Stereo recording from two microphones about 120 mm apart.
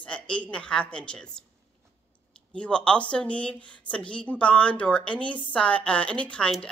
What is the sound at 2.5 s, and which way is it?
Speech, 10° left (ahead or behind).